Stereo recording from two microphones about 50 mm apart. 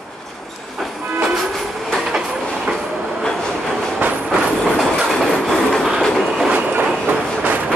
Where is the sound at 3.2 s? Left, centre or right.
Centre.